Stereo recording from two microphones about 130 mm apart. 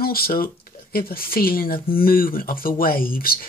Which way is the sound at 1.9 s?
90° left.